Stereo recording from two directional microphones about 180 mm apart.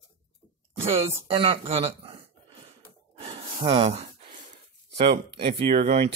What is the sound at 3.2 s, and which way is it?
Sigh, 35° right (ahead or behind).